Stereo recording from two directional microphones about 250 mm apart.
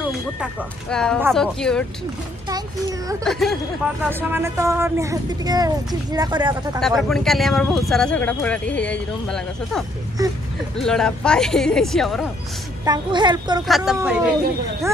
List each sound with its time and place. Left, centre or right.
0.4 s speech: centre
2.4 s speech: centre
3.3 s speech: centre
7.0 s speech: centre
10.2 s speech: centre
10.8 s speech: centre
12.8 s speech: centre
13.7 s speech: centre